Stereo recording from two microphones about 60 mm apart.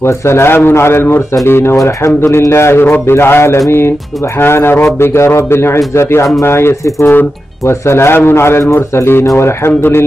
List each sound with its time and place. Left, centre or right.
0.0 s speech: left
9.2 s speech: left
9.7 s speech: left